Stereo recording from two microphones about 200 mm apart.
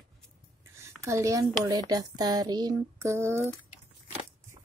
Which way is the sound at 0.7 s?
15° right (ahead or behind).